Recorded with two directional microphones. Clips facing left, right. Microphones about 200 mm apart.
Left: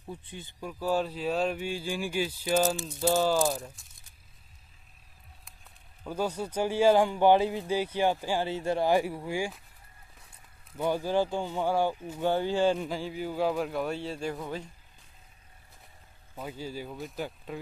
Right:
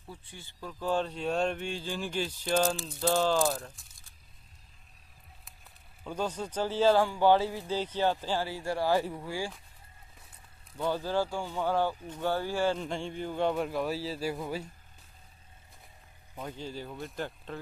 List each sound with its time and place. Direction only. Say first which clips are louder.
0.0 s a man's voice: left 6 dB; 20° left (ahead or behind); by 3.8 s centre (ahead or behind)
6.0 s speech: left 2 dB; 10° left (ahead or behind)
10.8 s speech: left 3 dB; 15° left (ahead or behind)
12.7 s a man's voice: left 2 dB; 5° left (ahead or behind)
16.3 s speech: left 2 dB; 10° left (ahead or behind)